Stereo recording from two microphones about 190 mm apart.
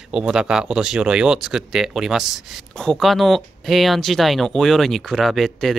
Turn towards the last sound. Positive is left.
turn(degrees=0)  # may be behind; listen again after turning